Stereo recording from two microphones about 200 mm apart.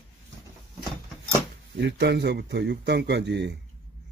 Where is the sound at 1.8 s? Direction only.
60° right (ahead or behind).